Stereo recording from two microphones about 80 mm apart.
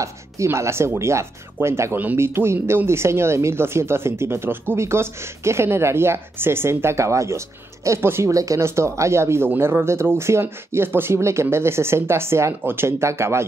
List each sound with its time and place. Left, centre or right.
0.0 s speech: right